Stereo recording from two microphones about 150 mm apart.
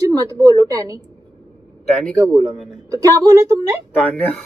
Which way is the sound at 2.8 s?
20° right (ahead or behind).